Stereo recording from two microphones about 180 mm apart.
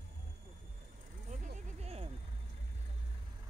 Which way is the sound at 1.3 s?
40° right (ahead or behind).